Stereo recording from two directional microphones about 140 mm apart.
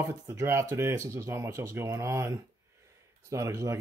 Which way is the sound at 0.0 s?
20° right (ahead or behind).